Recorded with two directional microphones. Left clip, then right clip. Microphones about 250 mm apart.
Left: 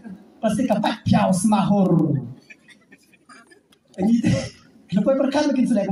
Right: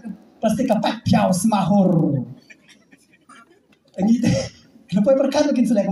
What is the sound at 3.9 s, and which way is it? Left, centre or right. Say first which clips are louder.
A man's voice: right 2 dB; right.